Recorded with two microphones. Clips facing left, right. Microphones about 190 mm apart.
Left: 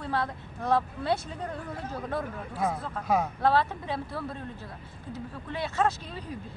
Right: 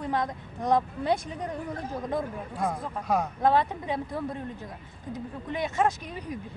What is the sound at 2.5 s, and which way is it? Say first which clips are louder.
Speech: left 1 dB; 5° left (ahead or behind).